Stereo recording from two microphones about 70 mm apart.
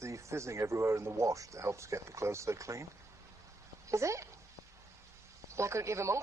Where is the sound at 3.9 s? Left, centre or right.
Right.